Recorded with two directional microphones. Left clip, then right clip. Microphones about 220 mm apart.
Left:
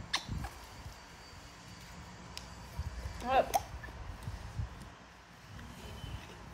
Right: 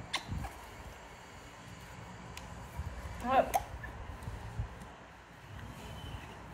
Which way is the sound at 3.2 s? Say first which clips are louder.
Right 1 dB; 45° left (ahead or behind).